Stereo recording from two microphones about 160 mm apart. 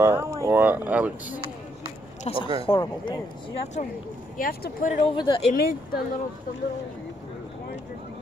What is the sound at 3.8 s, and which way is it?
Speech, 55° left (ahead or behind).